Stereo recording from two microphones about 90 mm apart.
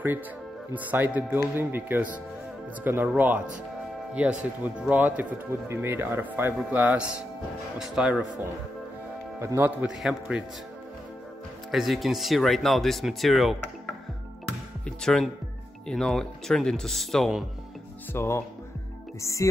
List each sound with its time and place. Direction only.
0.7 s speech: 20° right (ahead or behind)
4.1 s speech: 15° right (ahead or behind)
7.8 s speech: 5° right (ahead or behind)
9.4 s speech: 25° right (ahead or behind)
9.8 s speech: 5° right (ahead or behind)
11.7 s speech: centre (ahead or behind)
14.9 s speech: 5° left (ahead or behind)
18.1 s speech: 30° left (ahead or behind)